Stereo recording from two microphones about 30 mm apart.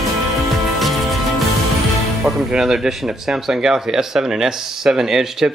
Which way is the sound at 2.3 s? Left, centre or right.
Right.